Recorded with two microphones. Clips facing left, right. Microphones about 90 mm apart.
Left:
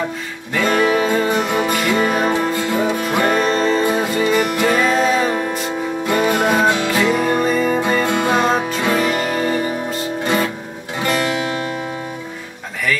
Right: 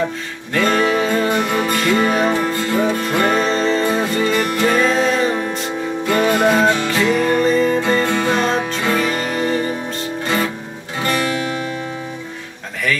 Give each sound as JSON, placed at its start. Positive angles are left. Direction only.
{"t": 0.6, "sound": "music", "side_deg": 10}
{"t": 10.2, "sound": "music", "side_deg": 20}